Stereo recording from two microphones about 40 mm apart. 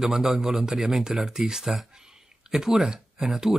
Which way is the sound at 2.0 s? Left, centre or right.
Centre.